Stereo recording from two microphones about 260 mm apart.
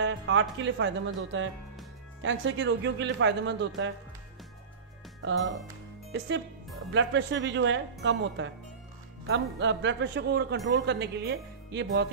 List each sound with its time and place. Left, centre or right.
0.0 s a man's voice: right
6.1 s a man's voice: right